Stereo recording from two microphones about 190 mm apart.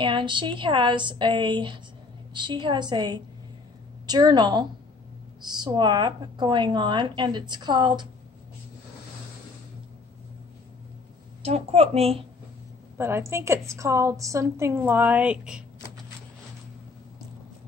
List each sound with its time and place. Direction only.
0.0 s a woman's voice: 25° right (ahead or behind)
11.4 s a child's voice: 35° right (ahead or behind)
12.9 s a woman's voice: 15° right (ahead or behind)